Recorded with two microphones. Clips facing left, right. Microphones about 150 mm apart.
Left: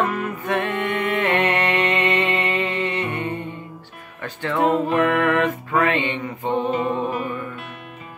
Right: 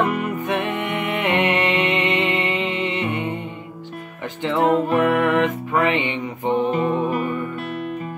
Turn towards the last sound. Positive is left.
turn(degrees=-20)  # may be behind; listen again after turning